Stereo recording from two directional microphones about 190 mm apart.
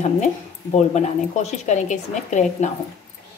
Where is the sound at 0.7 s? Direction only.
35° left (ahead or behind).